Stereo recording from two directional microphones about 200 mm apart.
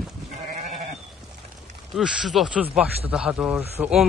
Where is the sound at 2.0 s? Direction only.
5° right (ahead or behind).